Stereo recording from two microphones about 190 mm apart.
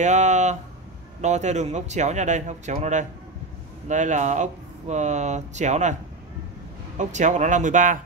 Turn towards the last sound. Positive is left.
turn(degrees=-40)  # may be behind; listen again after turning